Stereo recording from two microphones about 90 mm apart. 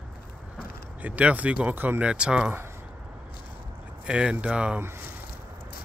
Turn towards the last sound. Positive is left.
turn(degrees=-15)  # may be behind; listen again after turning